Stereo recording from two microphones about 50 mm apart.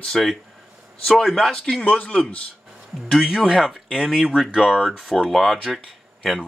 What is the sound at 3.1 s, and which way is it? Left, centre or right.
Speech, centre.